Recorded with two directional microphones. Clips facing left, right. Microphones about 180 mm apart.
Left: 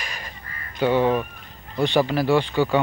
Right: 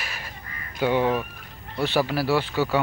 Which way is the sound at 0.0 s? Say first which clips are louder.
Left 1 dB; 5° right (ahead or behind).